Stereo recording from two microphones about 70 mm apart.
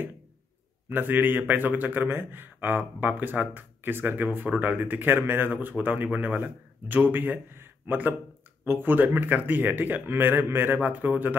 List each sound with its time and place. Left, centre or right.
0.8 s a man's voice: right
7.5 s a sound: right
8.6 s a man's voice: right